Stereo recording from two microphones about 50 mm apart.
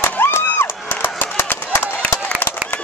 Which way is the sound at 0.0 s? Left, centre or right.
Left.